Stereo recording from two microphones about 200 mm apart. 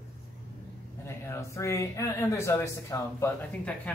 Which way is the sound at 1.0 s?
15° left (ahead or behind).